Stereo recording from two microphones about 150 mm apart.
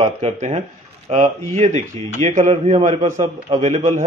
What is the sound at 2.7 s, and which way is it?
Speech, 35° right (ahead or behind).